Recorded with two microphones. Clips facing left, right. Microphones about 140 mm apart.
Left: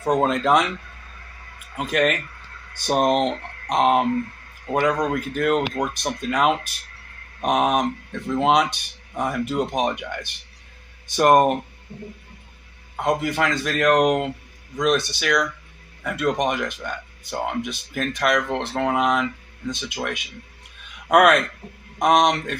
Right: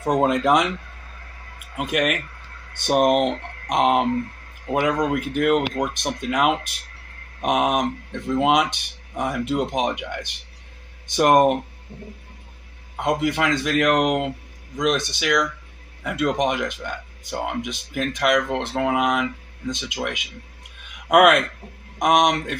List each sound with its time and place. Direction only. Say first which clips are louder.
0.0 s speech: right 1 dB; 15° right (ahead or behind)
1.8 s speech: left 1 dB; 10° right (ahead or behind)
13.1 s speech: right 1 dB; 15° right (ahead or behind)
15.0 s speech: even; 15° right (ahead or behind)